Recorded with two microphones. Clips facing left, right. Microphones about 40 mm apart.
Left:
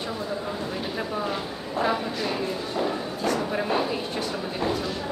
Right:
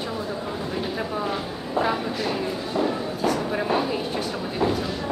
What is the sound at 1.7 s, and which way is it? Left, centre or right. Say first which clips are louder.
A woman's voice: right 1 dB; centre.